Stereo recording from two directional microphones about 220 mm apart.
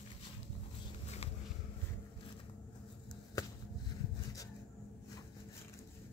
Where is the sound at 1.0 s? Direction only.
30° left (ahead or behind).